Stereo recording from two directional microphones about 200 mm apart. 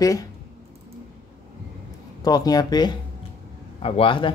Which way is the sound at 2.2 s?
20° left (ahead or behind).